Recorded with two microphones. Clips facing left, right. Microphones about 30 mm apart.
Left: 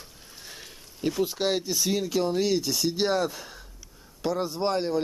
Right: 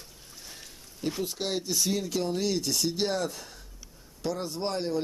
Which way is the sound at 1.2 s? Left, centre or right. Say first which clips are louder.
Left 7 dB; left.